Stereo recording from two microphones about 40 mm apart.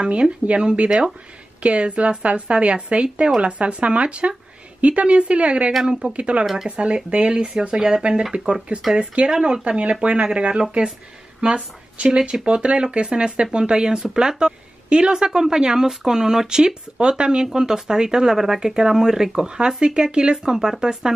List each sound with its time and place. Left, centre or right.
0.0 s speech: right
1.6 s speech: right
5.9 s speech: centre
6.1 s speech: right
6.4 s speech: centre
7.1 s speech: right; by 21.1 s centre